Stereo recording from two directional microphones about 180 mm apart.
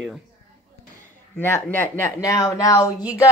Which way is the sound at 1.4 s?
10° left (ahead or behind).